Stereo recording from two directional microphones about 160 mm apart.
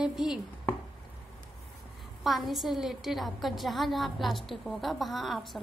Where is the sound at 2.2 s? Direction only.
Centre (ahead or behind).